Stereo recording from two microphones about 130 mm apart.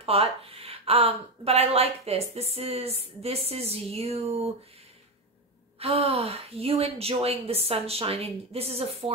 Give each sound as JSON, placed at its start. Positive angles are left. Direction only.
{"t": 0.0, "sound": "a woman's voice", "side_deg": -50}
{"t": 5.8, "sound": "a woman's voice", "side_deg": -50}